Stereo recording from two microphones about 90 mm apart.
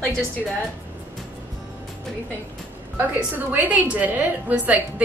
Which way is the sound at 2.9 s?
20° right (ahead or behind).